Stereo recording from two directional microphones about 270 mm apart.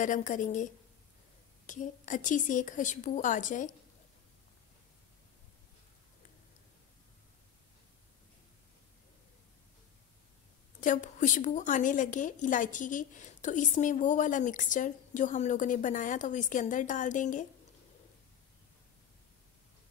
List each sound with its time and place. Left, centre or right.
0.0 s a woman's voice: left
1.7 s a woman's voice: left
10.8 s a woman's voice: left